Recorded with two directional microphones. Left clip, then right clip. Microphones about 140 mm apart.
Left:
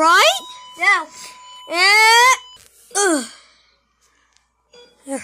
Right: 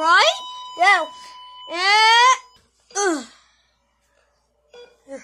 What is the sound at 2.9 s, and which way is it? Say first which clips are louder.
Sigh: left 4 dB; 40° left (ahead or behind).